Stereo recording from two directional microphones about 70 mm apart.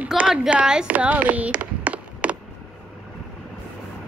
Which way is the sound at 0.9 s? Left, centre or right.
Right.